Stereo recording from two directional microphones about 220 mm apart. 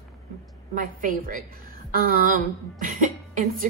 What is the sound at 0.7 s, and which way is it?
A woman's voice, 40° right (ahead or behind).